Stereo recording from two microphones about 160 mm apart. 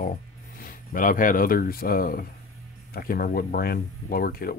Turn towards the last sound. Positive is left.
turn(degrees=70)  # may be behind; listen again after turning